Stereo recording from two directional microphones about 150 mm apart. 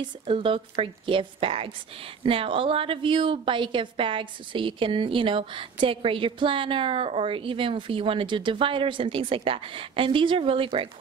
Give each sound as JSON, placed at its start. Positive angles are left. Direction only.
{"t": 0.0, "sound": "a woman's voice", "side_deg": -35}